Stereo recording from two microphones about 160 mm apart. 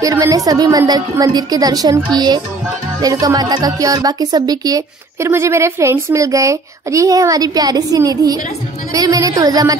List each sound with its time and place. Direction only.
0.0 s speech: 25° right (ahead or behind)